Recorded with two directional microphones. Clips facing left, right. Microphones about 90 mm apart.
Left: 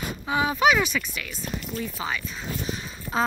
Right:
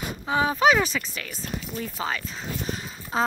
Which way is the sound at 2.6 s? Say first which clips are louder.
Even; 35° right (ahead or behind).